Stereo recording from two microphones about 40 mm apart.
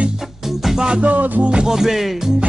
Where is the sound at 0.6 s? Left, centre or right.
Centre.